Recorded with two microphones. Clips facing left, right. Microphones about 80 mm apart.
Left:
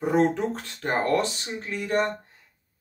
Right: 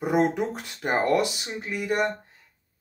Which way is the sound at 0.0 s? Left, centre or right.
Centre.